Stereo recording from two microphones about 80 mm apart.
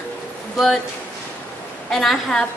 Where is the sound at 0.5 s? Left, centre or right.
Centre.